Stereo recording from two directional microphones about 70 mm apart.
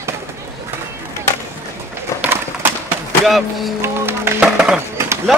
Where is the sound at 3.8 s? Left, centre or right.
Right.